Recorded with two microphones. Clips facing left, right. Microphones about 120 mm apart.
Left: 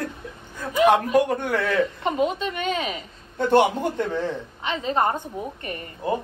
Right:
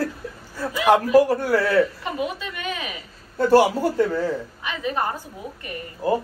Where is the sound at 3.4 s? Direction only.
5° right (ahead or behind).